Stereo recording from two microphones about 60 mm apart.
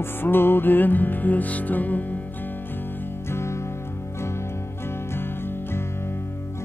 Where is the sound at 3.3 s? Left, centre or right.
Left.